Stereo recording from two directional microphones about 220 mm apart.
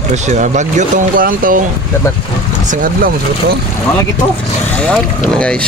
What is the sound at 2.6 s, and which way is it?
Speech, 35° right (ahead or behind).